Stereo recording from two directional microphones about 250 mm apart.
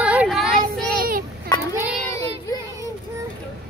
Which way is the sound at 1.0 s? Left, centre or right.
Right.